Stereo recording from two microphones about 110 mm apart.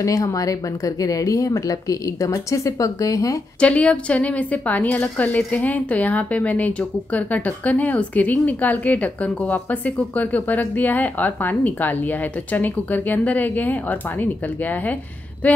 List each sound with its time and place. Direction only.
0.0 s speech: 30° left (ahead or behind)
3.5 s a woman's voice: 10° left (ahead or behind)